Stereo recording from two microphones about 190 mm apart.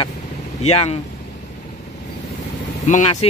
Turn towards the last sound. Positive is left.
turn(degrees=35)  # may be behind; listen again after turning